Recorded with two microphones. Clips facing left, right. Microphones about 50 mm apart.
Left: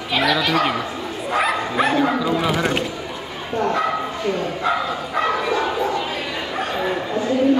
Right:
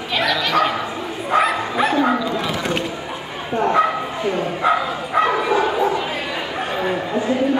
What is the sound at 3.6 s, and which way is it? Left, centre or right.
Bow-wow, centre.